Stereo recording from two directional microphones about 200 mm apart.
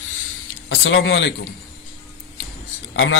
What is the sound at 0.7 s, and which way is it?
Speech, 70° left (ahead or behind).